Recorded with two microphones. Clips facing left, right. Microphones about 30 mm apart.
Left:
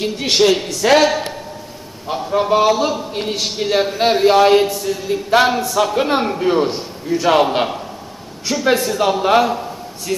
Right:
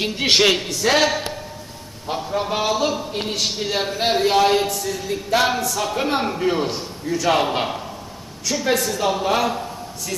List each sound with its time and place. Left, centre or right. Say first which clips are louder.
0.0 s speech: left 2 dB; centre
0.8 s a woman's voice: left 5 dB; centre
8.6 s a man's voice: left 5 dB; centre
9.4 s a sound: left 5 dB; centre